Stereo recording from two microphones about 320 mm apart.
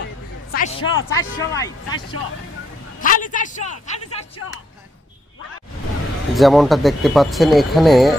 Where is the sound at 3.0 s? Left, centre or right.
Left.